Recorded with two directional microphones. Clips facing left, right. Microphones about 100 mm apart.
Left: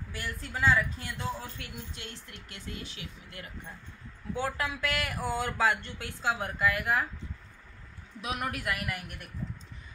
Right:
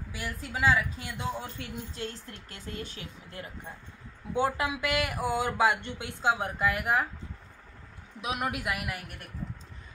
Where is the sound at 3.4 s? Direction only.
30° right (ahead or behind).